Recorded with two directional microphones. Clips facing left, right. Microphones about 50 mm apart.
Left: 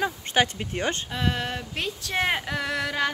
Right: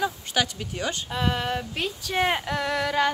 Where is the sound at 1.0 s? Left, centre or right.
Centre.